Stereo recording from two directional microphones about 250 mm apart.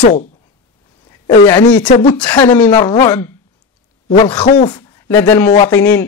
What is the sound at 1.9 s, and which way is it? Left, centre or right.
Speech, left.